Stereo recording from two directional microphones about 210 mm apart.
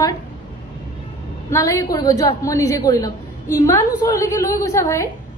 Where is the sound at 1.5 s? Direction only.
15° left (ahead or behind).